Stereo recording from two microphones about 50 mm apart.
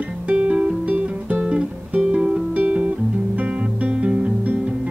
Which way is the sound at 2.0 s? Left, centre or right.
Centre.